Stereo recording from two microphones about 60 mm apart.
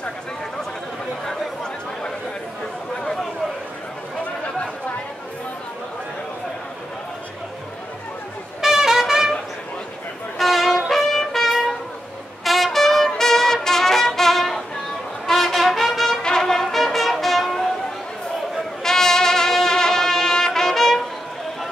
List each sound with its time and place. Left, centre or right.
1.2 s chatter: centre
8.5 s music: centre
10.3 s music: centre
15.2 s brass instrument: centre
18.8 s music: centre